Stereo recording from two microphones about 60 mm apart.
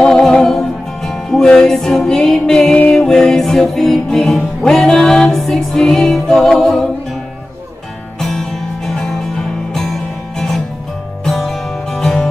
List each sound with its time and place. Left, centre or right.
0.0 s music: centre
8.2 s music: centre